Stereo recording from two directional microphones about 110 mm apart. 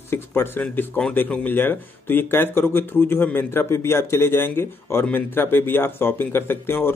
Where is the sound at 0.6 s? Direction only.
10° left (ahead or behind).